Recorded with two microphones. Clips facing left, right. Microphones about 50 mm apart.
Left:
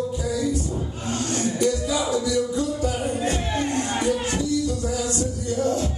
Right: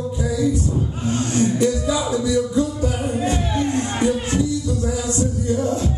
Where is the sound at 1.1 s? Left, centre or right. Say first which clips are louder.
Right 5 dB; right.